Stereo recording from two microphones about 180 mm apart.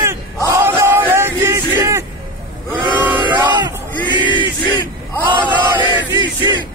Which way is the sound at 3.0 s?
10° right (ahead or behind).